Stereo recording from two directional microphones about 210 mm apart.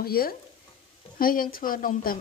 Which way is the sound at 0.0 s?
45° left (ahead or behind).